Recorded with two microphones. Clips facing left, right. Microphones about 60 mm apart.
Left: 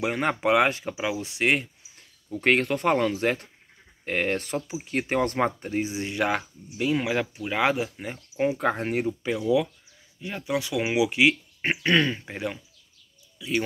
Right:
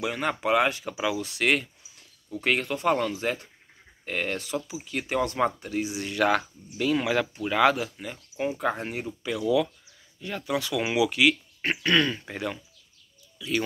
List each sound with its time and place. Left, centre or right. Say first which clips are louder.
0.0 s speech: left 3 dB; left
1.2 s speech: left 3 dB; centre
2.3 s speech: left 4 dB; left; by 7.9 s centre
8.0 s speech: left 4 dB; left
8.5 s speech: left 3 dB; left
9.2 s speech: right 2 dB; left